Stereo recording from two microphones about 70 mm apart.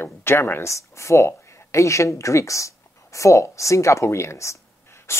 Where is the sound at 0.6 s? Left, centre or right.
Left.